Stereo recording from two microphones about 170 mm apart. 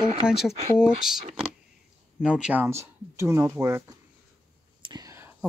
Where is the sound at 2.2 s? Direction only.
5° right (ahead or behind).